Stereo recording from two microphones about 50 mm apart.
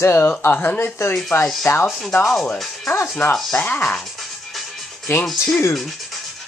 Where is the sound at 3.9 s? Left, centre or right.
Centre.